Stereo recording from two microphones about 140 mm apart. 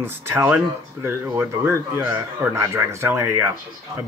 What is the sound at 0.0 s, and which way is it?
Speech, 20° right (ahead or behind).